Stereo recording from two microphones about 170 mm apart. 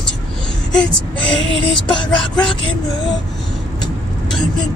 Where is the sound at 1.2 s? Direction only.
30° left (ahead or behind).